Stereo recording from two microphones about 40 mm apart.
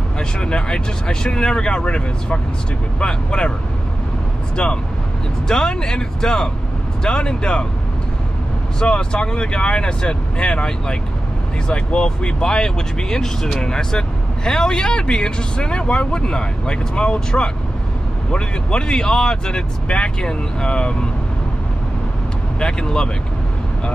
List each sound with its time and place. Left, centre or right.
0.2 s speech: left
5.5 s speech: centre
8.7 s speech: left
18.3 s speech: left
22.6 s speech: centre